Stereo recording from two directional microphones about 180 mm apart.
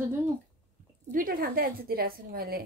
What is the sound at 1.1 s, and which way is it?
A woman's voice, 50° right (ahead or behind).